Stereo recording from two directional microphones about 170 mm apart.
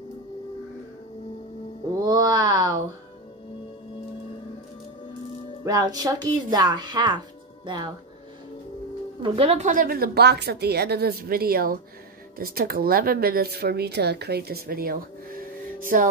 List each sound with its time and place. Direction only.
2.0 s a sound: 20° right (ahead or behind)
5.7 s speech: 20° right (ahead or behind)
9.2 s a woman's voice: 35° right (ahead or behind); by 16.1 s 50° right (ahead or behind)